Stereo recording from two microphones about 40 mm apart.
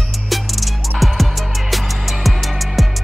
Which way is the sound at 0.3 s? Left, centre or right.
Centre.